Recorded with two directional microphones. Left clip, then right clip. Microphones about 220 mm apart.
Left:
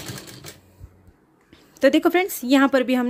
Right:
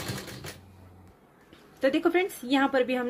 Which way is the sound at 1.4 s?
50° left (ahead or behind).